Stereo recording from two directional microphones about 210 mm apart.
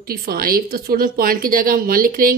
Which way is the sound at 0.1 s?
45° right (ahead or behind).